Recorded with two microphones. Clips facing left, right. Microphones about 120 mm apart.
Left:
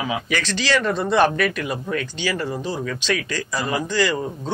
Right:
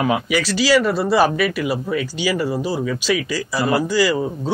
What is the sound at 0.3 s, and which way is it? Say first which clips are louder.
Speech: right 4 dB; 10° right (ahead or behind).